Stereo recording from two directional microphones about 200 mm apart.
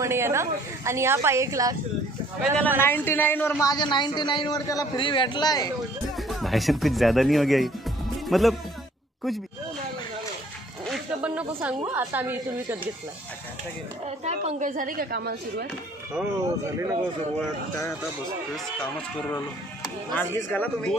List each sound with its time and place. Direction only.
0.0 s a woman's voice: 15° right (ahead or behind)
2.4 s a man's voice: 5° left (ahead or behind); by 5.7 s 20° left (ahead or behind)
6.1 s speech: centre (ahead or behind)
10.9 s snake: 5° right (ahead or behind)
11.9 s a woman's voice: 10° right (ahead or behind)
14.0 s a woman's voice: 35° right (ahead or behind); by 15.6 s 50° right (ahead or behind)
16.2 s a woman's voice: 15° right (ahead or behind)
20.1 s speech: 10° left (ahead or behind)